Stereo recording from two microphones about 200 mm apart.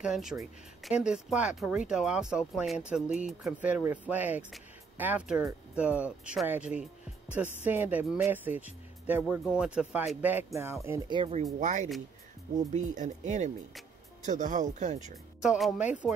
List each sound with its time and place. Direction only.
0.0 s speech: centre (ahead or behind); by 11.2 s 20° right (ahead or behind)
11.6 s speech: 35° right (ahead or behind)
15.4 s speech: 5° right (ahead or behind)